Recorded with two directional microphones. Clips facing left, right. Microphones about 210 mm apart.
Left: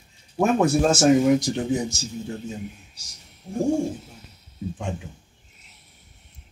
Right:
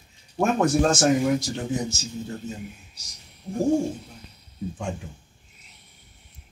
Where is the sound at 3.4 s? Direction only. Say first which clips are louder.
Left 1 dB; centre (ahead or behind).